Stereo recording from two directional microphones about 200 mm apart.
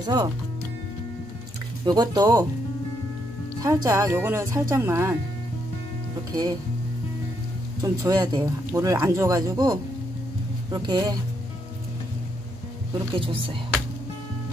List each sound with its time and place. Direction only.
0.0 s speech: 20° right (ahead or behind)
1.9 s speech: 20° right (ahead or behind)
3.6 s speech: 15° right (ahead or behind)
7.8 s speech: 20° right (ahead or behind)
13.1 s speech: 25° right (ahead or behind)